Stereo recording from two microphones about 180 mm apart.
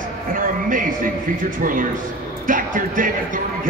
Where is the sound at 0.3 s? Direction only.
50° right (ahead or behind).